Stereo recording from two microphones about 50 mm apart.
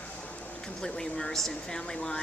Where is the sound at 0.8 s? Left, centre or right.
Centre.